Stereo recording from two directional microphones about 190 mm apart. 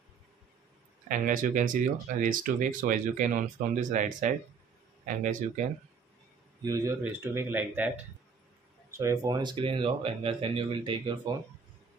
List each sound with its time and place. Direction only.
1.0 s speech: 45° right (ahead or behind)
6.6 s speech: 15° right (ahead or behind)